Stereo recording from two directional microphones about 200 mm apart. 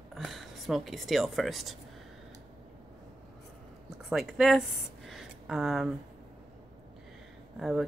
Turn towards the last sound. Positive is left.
turn(degrees=0)  # may be behind; listen again after turning